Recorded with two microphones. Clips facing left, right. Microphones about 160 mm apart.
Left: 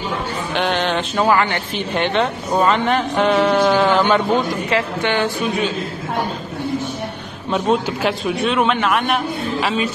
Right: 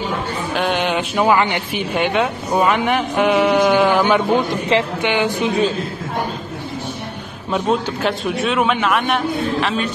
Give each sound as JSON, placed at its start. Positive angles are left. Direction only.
{"t": 0.6, "sound": "a woman's voice", "side_deg": -10}
{"t": 7.5, "sound": "a man's voice", "side_deg": 0}